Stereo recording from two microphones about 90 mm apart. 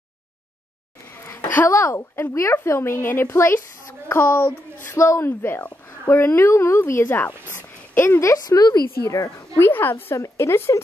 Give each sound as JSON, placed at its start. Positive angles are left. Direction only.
{"t": 1.1, "sound": "a sound", "side_deg": 25}
{"t": 1.5, "sound": "a woman's voice", "side_deg": 25}
{"t": 9.6, "sound": "a woman's voice", "side_deg": 25}